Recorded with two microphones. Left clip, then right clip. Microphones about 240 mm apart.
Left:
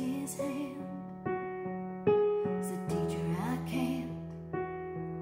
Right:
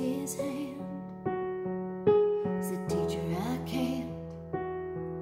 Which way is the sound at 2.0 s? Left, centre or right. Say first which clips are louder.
Right 3 dB; right.